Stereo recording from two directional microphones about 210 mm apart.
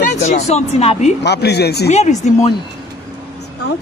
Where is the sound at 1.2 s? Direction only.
50° left (ahead or behind).